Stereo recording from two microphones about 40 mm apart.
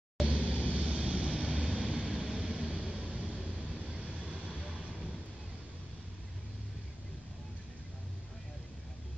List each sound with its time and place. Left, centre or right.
0.3 s vehicle: right